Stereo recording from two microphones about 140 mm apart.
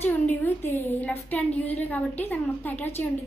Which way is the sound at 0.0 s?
15° left (ahead or behind).